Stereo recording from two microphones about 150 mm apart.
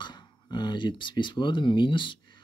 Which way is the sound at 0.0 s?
30° left (ahead or behind).